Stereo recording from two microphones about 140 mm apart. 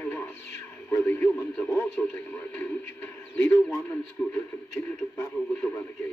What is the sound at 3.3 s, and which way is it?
Speech, 5° left (ahead or behind).